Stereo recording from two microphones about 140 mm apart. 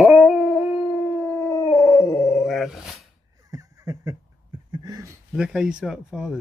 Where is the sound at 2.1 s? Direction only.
5° right (ahead or behind).